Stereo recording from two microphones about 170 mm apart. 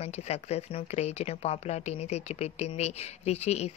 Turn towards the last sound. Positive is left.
turn(degrees=40)  # may be behind; listen again after turning